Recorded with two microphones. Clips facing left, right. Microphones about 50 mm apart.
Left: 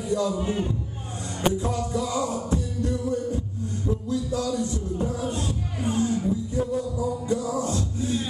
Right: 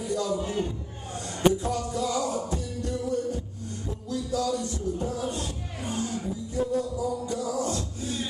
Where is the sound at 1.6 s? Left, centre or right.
Left.